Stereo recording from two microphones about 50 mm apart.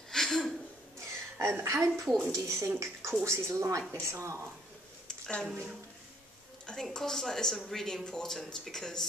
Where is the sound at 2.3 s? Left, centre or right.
Right.